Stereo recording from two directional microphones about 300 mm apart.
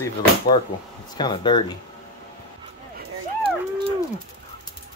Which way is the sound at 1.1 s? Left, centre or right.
Centre.